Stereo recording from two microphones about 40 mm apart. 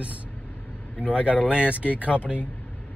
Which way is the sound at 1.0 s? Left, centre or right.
Right.